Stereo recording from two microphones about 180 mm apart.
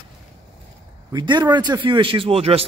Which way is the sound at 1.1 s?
25° right (ahead or behind).